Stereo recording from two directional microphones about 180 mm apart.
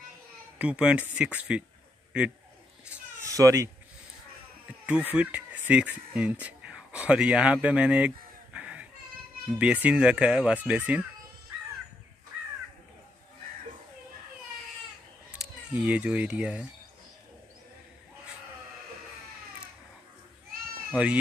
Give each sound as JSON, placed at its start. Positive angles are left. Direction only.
{"t": 0.6, "sound": "speech", "side_deg": -5}
{"t": 3.3, "sound": "speech", "side_deg": -20}
{"t": 4.8, "sound": "speech", "side_deg": -5}
{"t": 8.5, "sound": "a sound", "side_deg": -5}
{"t": 9.5, "sound": "speech", "side_deg": -5}
{"t": 15.3, "sound": "speech", "side_deg": -5}
{"t": 20.9, "sound": "speech", "side_deg": -5}